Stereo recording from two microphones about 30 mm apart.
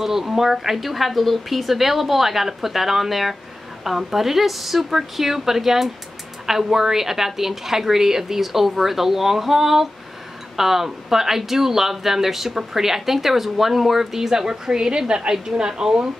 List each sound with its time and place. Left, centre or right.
0.0 s speech: centre